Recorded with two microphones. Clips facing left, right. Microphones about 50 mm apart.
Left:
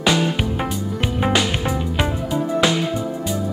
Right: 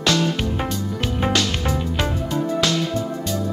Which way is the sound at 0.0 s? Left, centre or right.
Centre.